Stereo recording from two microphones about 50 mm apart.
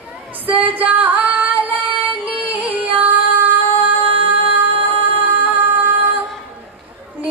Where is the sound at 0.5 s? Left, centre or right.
Right.